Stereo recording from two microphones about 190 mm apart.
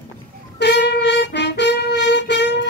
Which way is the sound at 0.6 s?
65° left (ahead or behind).